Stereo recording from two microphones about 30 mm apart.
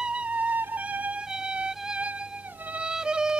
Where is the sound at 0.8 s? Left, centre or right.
Right.